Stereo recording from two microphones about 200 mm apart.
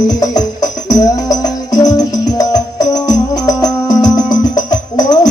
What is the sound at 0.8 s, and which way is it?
Music, 20° left (ahead or behind).